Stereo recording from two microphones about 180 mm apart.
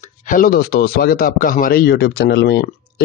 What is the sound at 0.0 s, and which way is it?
A man's voice, 45° left (ahead or behind).